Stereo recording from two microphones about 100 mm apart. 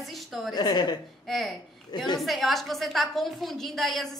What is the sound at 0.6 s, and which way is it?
Speech, 45° left (ahead or behind).